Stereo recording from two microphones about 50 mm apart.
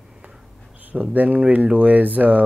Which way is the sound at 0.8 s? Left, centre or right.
Right.